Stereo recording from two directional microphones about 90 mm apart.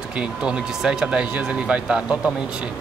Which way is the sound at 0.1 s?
10° right (ahead or behind).